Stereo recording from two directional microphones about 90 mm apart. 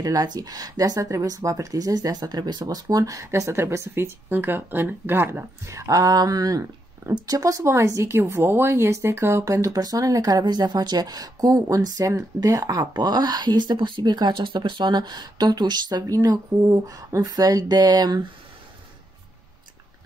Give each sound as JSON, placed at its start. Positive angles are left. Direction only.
{"t": 0.0, "sound": "speech", "side_deg": -45}